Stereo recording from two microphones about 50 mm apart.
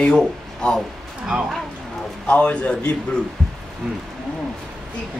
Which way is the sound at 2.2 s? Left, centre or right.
Left.